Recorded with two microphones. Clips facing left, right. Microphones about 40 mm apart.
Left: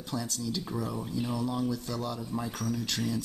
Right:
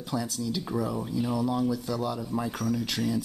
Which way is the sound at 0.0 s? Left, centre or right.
Centre.